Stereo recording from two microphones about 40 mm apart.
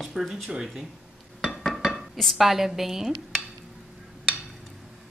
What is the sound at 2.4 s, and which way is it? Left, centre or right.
A woman's voice, centre.